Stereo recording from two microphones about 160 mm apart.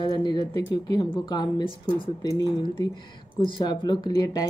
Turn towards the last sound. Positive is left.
turn(degrees=25)  # may be behind; listen again after turning